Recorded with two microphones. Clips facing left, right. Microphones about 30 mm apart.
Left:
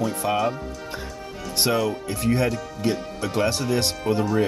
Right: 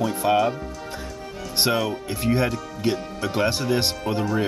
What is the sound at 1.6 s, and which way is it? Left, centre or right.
Speech, centre.